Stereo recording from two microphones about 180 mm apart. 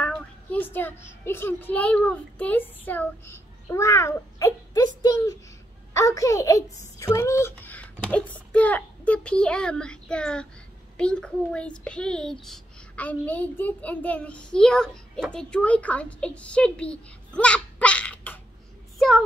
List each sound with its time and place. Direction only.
0.0 s a child's voice: 10° left (ahead or behind)